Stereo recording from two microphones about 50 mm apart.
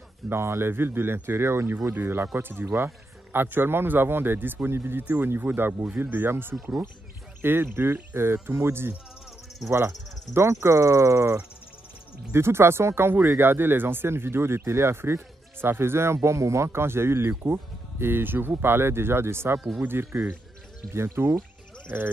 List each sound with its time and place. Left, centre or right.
0.3 s speech: right
5.0 s speech: right
8.3 s speech: right
12.3 s speech: right
13.1 s speech: right
20.9 s speech: right
21.9 s speech: right